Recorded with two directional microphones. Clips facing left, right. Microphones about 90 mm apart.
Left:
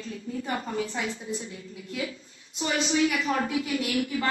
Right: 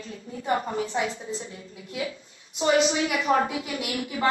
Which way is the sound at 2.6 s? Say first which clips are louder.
Right 3 dB; 30° right (ahead or behind).